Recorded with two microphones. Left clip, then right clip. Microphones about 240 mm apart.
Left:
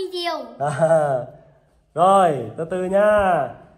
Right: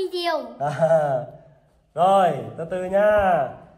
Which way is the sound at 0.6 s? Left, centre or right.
Centre.